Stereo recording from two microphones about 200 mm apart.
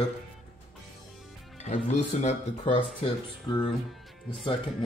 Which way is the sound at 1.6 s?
35° left (ahead or behind).